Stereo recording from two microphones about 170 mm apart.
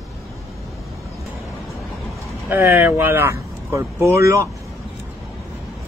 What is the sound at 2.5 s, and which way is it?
Speech, 15° right (ahead or behind).